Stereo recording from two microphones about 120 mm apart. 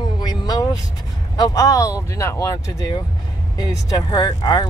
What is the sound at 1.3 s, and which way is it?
Speech, 30° left (ahead or behind).